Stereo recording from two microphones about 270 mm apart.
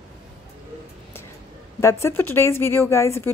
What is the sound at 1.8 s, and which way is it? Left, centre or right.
A woman's voice, centre.